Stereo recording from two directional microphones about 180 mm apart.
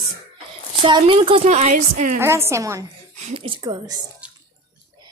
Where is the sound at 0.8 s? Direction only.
25° right (ahead or behind).